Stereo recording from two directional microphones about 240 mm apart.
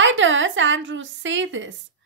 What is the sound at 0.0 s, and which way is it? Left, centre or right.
A woman's voice, right.